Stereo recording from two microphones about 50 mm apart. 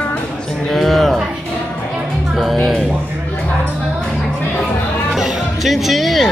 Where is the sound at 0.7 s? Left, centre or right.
Centre.